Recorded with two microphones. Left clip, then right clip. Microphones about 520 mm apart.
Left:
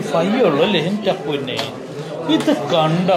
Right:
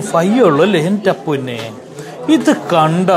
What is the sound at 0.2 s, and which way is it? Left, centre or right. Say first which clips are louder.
Speech: right 5 dB; right.